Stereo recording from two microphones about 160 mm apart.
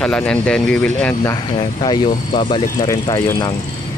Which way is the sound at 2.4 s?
35° left (ahead or behind).